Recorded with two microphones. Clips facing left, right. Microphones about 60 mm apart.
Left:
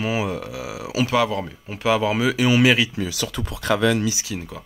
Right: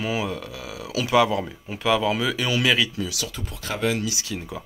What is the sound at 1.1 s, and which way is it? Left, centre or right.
Speech, centre.